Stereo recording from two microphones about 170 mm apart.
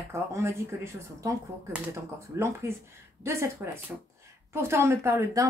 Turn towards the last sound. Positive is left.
turn(degrees=-15)  # may be behind; listen again after turning